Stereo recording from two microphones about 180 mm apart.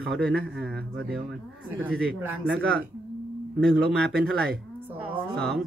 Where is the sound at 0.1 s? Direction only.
Centre (ahead or behind).